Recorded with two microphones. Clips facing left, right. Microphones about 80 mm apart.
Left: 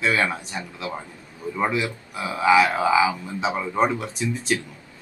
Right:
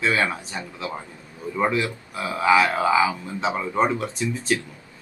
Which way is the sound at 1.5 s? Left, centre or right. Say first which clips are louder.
Right 1 dB; centre.